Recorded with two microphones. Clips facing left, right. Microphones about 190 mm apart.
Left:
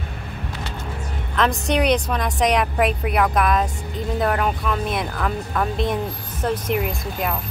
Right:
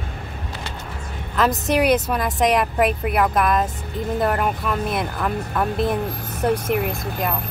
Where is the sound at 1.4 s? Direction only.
5° right (ahead or behind).